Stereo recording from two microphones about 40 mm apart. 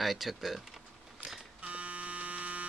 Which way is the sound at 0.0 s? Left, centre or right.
Centre.